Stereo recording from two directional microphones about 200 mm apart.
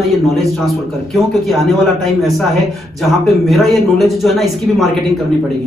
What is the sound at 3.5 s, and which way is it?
Speech, centre (ahead or behind).